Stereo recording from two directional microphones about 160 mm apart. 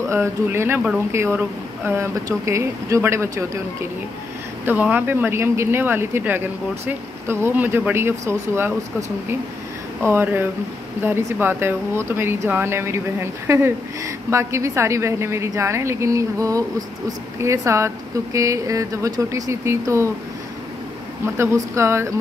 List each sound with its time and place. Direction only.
0.1 s speech: 15° right (ahead or behind)
4.6 s speech: 10° right (ahead or behind)
10.0 s speech: 15° right (ahead or behind)
21.4 s speech: 15° right (ahead or behind)